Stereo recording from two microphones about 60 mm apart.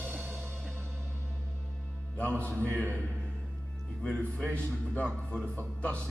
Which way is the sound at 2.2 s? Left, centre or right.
Left.